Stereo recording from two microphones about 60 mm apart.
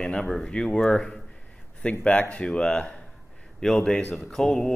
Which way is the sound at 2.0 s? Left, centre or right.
Centre.